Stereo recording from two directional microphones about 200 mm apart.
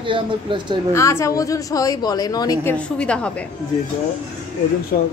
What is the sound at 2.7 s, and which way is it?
Speech, 5° left (ahead or behind).